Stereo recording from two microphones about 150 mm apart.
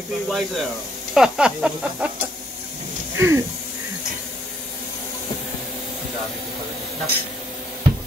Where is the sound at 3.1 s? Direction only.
20° right (ahead or behind).